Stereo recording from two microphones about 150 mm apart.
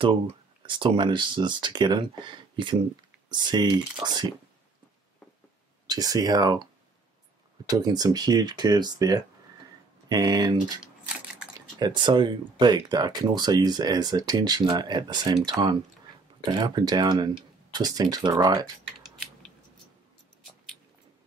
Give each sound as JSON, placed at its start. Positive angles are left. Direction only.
{"t": 0.7, "sound": "speech", "side_deg": -35}
{"t": 5.9, "sound": "speech", "side_deg": -25}
{"t": 11.8, "sound": "speech", "side_deg": -30}